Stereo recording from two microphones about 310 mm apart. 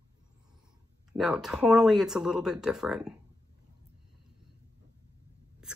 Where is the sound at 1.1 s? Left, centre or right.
Centre.